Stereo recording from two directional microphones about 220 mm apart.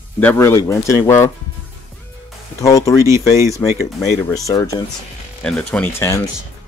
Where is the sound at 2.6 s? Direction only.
15° left (ahead or behind).